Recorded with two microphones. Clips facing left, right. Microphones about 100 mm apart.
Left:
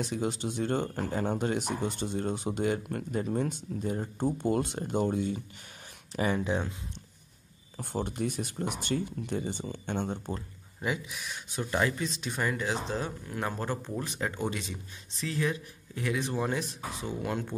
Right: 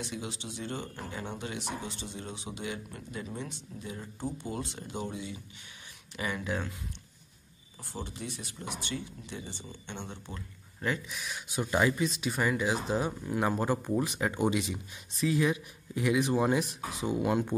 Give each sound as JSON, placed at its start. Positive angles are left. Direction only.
{"t": 0.0, "sound": "speech", "side_deg": 45}
{"t": 6.1, "sound": "speech", "side_deg": 35}
{"t": 7.7, "sound": "speech", "side_deg": 55}
{"t": 11.1, "sound": "speech", "side_deg": 0}
{"t": 11.5, "sound": "speech", "side_deg": -10}